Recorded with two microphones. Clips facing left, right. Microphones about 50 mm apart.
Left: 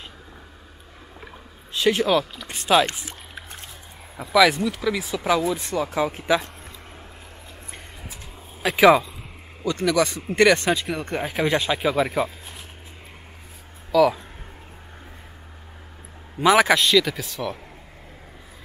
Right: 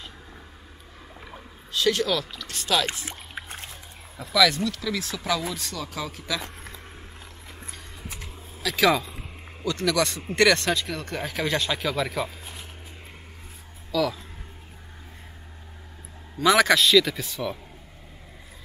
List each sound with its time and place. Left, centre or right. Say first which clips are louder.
1.7 s speech: left 4 dB; left
3.3 s a sound: right 2 dB; right
4.2 s speech: left 4 dB; centre
8.6 s speech: left 7 dB; centre
13.9 s speech: left 8 dB; centre
16.3 s speech: left 2 dB; centre
16.8 s speech: even; centre